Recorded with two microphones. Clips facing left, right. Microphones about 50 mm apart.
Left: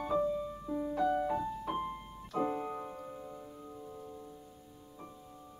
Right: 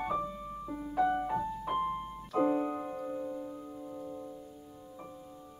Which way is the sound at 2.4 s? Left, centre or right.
Centre.